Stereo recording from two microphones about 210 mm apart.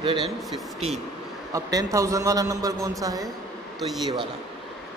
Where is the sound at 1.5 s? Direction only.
15° right (ahead or behind).